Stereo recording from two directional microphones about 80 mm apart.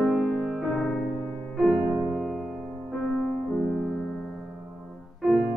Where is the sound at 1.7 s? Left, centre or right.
Centre.